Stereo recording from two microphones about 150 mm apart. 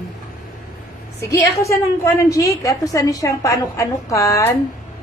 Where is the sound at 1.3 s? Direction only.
20° left (ahead or behind).